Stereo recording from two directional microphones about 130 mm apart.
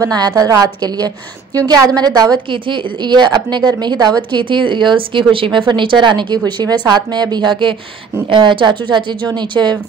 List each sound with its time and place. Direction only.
0.0 s a woman's voice: 30° right (ahead or behind)